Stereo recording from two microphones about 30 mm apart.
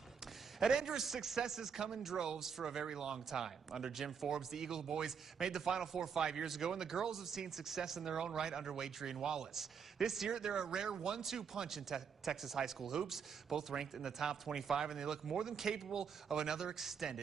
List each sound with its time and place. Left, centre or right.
0.6 s speech: centre
9.5 s speech: centre
10.3 s speech: right
16.7 s speech: centre